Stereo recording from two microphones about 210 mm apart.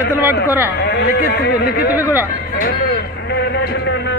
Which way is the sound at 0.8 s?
50° left (ahead or behind).